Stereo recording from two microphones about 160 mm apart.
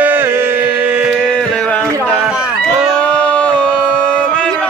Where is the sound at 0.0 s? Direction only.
10° right (ahead or behind).